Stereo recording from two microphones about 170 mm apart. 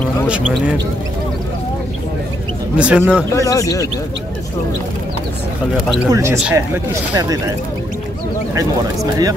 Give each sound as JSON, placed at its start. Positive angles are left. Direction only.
{"t": 2.8, "sound": "speech", "side_deg": -5}
{"t": 3.3, "sound": "speech", "side_deg": 20}
{"t": 6.0, "sound": "speech", "side_deg": -20}